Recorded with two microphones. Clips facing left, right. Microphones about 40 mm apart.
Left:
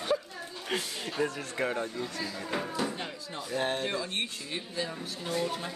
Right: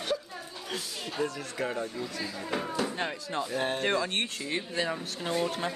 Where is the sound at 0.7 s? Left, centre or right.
Left.